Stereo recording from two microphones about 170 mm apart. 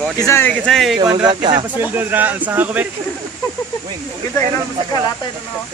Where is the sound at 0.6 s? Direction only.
Centre (ahead or behind).